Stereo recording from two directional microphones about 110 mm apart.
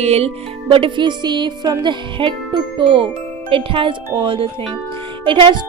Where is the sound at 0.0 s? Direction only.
75° right (ahead or behind).